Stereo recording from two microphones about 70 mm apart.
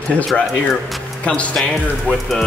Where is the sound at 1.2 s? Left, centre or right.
Centre.